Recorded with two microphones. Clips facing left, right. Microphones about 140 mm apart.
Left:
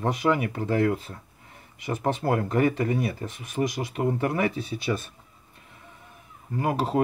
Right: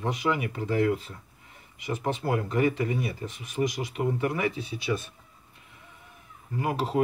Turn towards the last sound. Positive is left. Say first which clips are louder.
# left 3 dB
turn(degrees=45)  # may be behind; listen again after turning